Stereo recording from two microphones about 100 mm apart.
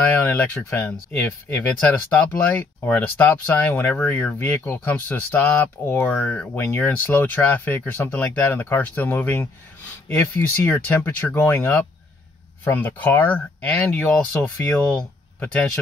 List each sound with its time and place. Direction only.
0.2 s speech: 15° left (ahead or behind)